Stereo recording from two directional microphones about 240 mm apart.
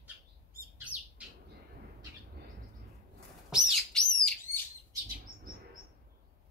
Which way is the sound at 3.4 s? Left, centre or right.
Centre.